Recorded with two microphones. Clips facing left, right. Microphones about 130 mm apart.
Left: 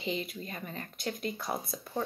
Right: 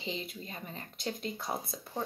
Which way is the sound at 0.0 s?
25° right (ahead or behind).